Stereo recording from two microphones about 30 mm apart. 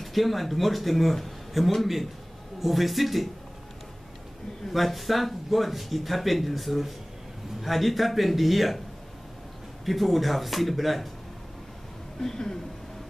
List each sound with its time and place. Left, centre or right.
0.0 s speech: centre
4.7 s speech: centre
9.8 s speech: centre
12.2 s speech: centre